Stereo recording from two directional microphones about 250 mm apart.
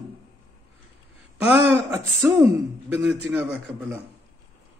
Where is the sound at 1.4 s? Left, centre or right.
Centre.